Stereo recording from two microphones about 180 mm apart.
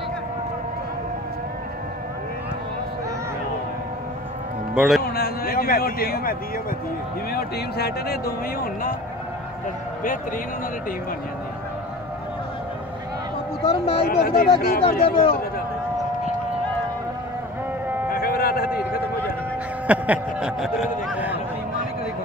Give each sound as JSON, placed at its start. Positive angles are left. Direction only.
{"t": 4.7, "sound": "speech", "side_deg": 0}
{"t": 5.0, "sound": "a sound", "side_deg": 55}
{"t": 7.3, "sound": "a man's voice", "side_deg": 60}
{"t": 13.7, "sound": "speech", "side_deg": 30}
{"t": 14.0, "sound": "a man's voice", "side_deg": 55}
{"t": 18.1, "sound": "vehicle", "side_deg": 55}
{"t": 19.9, "sound": "speech", "side_deg": -5}